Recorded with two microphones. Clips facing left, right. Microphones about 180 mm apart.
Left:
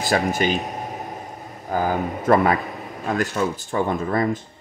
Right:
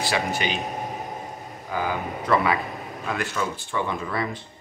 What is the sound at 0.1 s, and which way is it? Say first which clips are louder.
Speech: left 7 dB; 45° left (ahead or behind).